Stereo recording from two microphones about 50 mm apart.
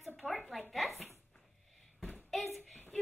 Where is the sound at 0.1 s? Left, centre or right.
Centre.